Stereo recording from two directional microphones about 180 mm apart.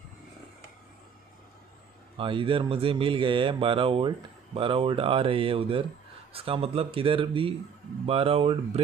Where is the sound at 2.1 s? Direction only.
30° right (ahead or behind).